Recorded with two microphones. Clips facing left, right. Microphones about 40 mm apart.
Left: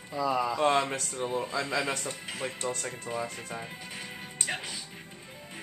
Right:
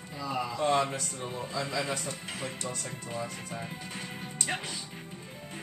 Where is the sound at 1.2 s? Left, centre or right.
Centre.